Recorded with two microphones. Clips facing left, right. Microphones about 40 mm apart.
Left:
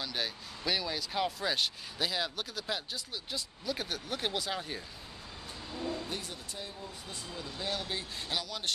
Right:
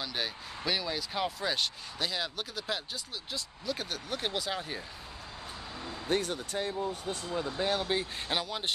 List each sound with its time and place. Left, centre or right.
0.0 s speech: centre
6.0 s speech: right
7.2 s speech: right